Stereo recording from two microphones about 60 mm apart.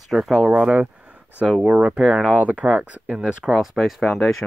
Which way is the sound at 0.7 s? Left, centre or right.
Right.